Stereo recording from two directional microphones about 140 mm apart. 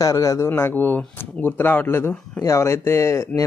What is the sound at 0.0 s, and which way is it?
Speech, 25° left (ahead or behind).